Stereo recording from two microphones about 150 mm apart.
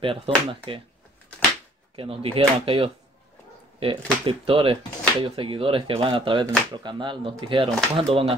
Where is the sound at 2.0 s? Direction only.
35° right (ahead or behind).